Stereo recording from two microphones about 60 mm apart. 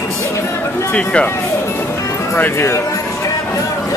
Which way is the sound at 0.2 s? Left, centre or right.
Left.